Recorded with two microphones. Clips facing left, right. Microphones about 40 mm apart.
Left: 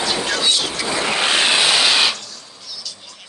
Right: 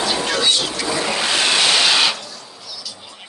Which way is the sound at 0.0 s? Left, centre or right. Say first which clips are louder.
Right 1 dB; centre.